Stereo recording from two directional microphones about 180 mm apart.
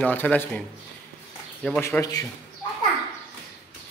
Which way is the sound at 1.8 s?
15° left (ahead or behind).